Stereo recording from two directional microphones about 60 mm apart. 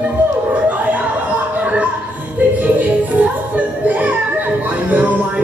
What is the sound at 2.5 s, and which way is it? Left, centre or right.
Music, right.